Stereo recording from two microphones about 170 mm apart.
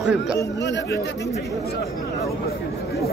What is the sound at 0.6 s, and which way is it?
Speech, 90° left.